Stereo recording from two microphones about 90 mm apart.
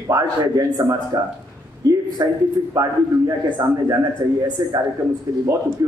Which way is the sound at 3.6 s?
45° right (ahead or behind).